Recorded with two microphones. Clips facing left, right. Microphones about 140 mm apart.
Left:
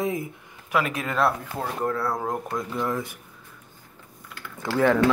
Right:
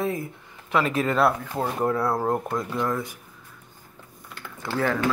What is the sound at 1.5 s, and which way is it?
Speech, 20° right (ahead or behind).